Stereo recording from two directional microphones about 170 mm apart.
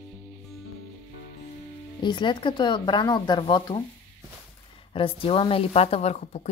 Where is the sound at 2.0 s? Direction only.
25° left (ahead or behind).